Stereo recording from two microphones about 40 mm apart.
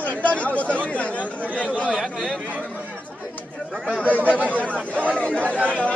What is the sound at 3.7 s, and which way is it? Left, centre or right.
Speech, right.